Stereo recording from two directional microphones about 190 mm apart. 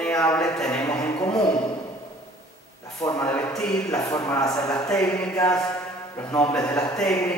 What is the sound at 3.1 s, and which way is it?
Speech, 5° left (ahead or behind).